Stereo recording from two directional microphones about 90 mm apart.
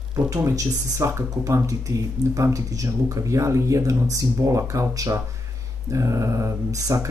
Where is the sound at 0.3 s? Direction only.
35° right (ahead or behind).